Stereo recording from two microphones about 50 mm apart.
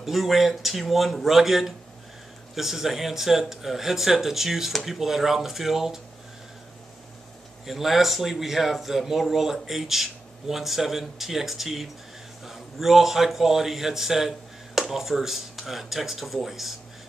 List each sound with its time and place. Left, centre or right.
0.0 s speech: centre
7.6 s speech: centre